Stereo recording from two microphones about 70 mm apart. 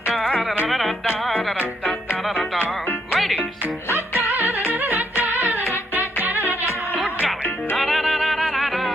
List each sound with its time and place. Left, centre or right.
0.7 s music: centre
3.1 s music: centre
4.3 s music: right
7.7 s music: centre